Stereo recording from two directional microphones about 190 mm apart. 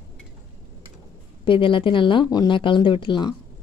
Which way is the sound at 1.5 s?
25° left (ahead or behind).